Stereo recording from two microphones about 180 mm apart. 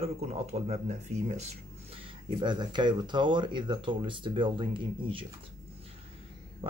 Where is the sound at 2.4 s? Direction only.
25° right (ahead or behind).